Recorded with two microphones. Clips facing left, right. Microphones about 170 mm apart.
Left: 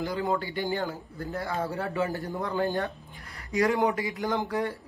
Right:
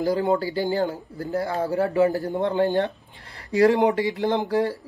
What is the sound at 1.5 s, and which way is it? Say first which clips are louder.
Speech: right 7 dB; 35° right (ahead or behind).